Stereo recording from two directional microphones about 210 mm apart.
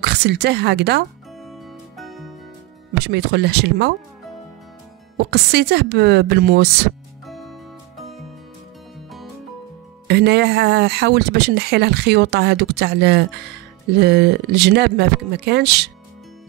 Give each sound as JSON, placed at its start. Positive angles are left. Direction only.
{"t": 0.0, "sound": "a woman's voice", "side_deg": -50}
{"t": 2.0, "sound": "music", "side_deg": 0}
{"t": 3.0, "sound": "speech", "side_deg": -50}
{"t": 5.1, "sound": "speech", "side_deg": -55}
{"t": 7.2, "sound": "music", "side_deg": 0}
{"t": 10.0, "sound": "speech", "side_deg": -55}